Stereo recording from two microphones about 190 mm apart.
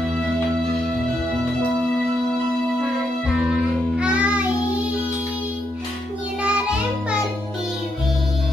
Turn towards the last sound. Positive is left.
turn(degrees=-5)  # may be behind; listen again after turning